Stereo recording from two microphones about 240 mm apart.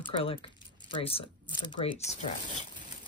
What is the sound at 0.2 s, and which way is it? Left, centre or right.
Speech, left.